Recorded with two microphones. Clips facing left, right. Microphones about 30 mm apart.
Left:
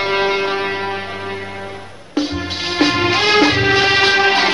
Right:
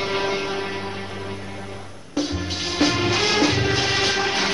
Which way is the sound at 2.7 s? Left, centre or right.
Left.